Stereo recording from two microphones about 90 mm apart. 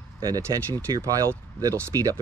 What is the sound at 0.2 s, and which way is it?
Speech, 40° right (ahead or behind).